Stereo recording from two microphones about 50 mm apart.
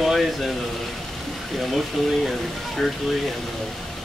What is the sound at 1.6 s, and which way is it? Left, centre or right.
Speech, centre.